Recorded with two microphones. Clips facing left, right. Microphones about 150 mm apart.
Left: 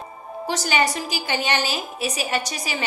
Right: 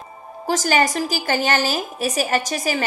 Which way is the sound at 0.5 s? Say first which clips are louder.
Right 4 dB; 45° right (ahead or behind).